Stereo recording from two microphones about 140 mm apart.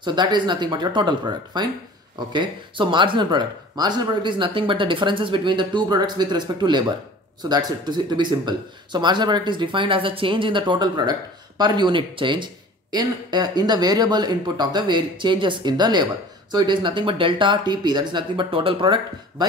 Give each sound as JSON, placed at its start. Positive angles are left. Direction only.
{"t": 0.0, "sound": "speech", "side_deg": -30}